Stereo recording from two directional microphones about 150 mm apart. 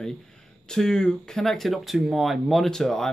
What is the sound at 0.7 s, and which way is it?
Speech, 5° left (ahead or behind).